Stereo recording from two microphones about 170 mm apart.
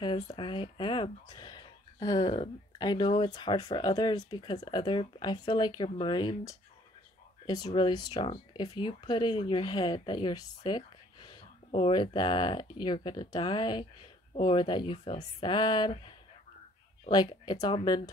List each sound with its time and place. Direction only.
0.0 s speech: 30° left (ahead or behind)
17.1 s speech: 25° left (ahead or behind)